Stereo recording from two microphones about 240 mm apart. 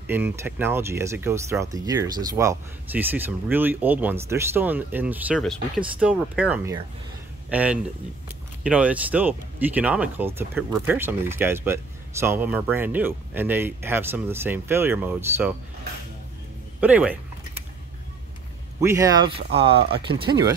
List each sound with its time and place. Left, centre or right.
0.1 s speech: centre
16.8 s speech: centre
18.8 s speech: centre